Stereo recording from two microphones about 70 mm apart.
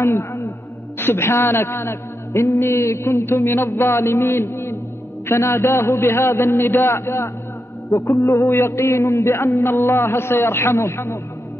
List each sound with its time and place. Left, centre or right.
0.0 s a sound: left
0.9 s a man's voice: left
7.9 s music: left
8.5 s a man's voice: left